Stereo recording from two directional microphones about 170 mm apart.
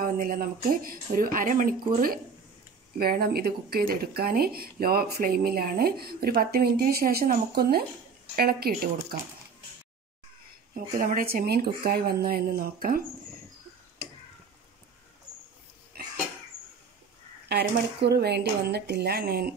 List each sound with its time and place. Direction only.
0.0 s speech: 55° right (ahead or behind)
10.7 s speech: 55° right (ahead or behind)
17.5 s speech: 75° right (ahead or behind)